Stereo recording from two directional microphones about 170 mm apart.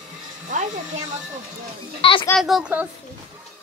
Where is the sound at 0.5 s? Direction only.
45° right (ahead or behind).